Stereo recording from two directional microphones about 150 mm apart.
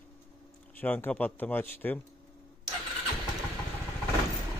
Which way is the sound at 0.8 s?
10° left (ahead or behind).